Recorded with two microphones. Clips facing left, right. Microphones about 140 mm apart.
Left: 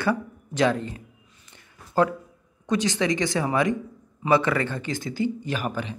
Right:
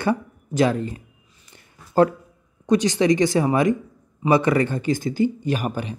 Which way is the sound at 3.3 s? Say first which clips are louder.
Right 6 dB; 30° right (ahead or behind).